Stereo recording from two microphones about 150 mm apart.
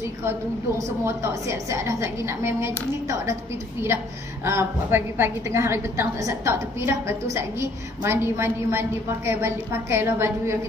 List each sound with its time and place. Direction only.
1.0 s a woman's voice: 20° right (ahead or behind)
4.5 s a woman's voice: 15° right (ahead or behind)